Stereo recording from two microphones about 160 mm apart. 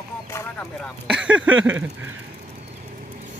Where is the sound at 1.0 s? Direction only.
5° right (ahead or behind).